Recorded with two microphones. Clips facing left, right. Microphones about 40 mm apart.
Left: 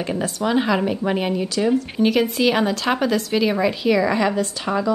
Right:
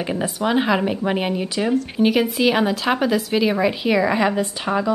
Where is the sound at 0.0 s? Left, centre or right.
Centre.